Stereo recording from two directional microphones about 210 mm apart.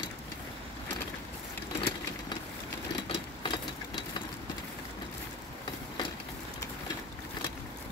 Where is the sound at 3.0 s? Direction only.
20° left (ahead or behind).